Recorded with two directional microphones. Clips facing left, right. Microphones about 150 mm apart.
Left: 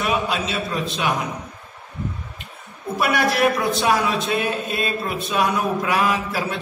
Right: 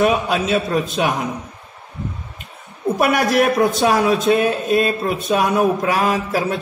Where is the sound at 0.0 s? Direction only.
50° right (ahead or behind).